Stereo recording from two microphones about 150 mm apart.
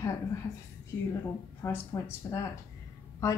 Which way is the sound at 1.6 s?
25° left (ahead or behind).